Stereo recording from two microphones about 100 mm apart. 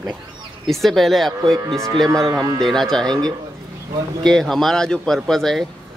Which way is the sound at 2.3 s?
40° right (ahead or behind).